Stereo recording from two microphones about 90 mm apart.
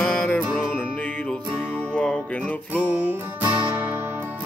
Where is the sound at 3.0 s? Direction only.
15° right (ahead or behind).